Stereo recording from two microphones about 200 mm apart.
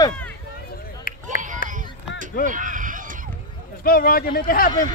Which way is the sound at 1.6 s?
45° left (ahead or behind).